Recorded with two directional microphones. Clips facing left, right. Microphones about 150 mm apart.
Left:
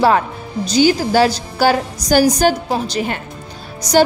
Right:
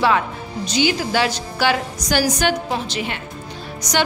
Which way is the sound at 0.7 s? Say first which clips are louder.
Left 6 dB; 40° left (ahead or behind).